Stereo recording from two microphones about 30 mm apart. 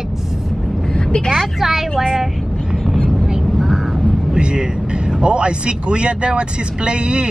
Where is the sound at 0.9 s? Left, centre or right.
Left.